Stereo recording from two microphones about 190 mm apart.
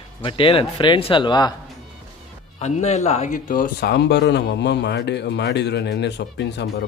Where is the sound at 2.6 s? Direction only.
35° left (ahead or behind).